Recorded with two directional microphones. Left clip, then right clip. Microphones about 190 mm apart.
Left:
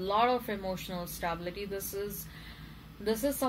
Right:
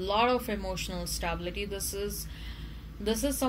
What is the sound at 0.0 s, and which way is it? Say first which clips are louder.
Speech: right 1 dB; 35° right (ahead or behind).